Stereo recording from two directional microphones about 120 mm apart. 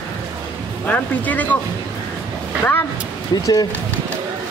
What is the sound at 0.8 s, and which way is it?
Speech, 15° left (ahead or behind).